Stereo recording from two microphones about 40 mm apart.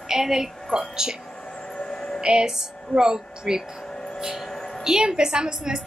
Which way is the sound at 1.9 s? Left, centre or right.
Left.